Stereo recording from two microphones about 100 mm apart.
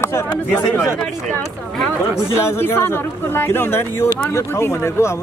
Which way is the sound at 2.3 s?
25° left (ahead or behind).